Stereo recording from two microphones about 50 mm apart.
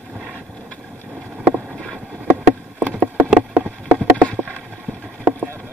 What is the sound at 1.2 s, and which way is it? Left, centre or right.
Boat, right.